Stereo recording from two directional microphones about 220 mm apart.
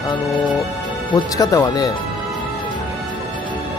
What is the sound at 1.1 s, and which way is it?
Speech, 15° left (ahead or behind).